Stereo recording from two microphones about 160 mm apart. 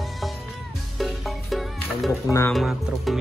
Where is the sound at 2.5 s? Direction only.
Centre (ahead or behind).